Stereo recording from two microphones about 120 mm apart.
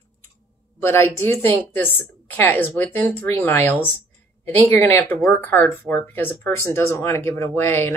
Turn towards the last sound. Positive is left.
turn(degrees=20)  # may be behind; listen again after turning